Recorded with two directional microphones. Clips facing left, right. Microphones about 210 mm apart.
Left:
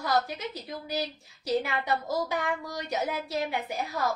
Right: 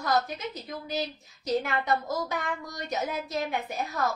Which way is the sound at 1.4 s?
10° left (ahead or behind).